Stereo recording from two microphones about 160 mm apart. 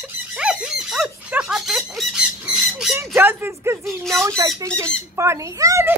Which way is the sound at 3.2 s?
15° right (ahead or behind).